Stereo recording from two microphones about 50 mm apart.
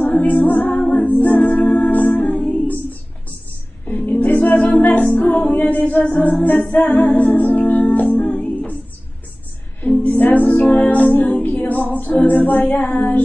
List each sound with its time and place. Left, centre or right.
0.0 s music: left
0.8 s a capella: left
2.7 s a sound: left
3.8 s a capella: left
9.8 s music: left